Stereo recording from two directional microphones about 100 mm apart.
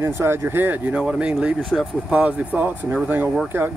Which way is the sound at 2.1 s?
15° right (ahead or behind).